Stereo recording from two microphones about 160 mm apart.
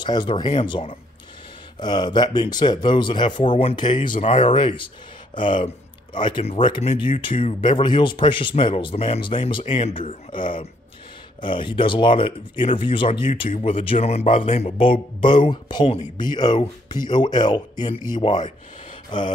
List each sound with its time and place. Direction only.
0.0 s speech: 30° left (ahead or behind)
4.1 s speech: 40° left (ahead or behind)
19.0 s mantra: 30° left (ahead or behind)